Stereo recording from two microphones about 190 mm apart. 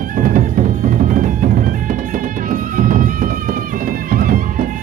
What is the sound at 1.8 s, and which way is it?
Music, 45° right (ahead or behind).